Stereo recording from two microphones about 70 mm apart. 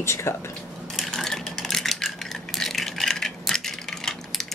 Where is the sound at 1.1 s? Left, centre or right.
Centre.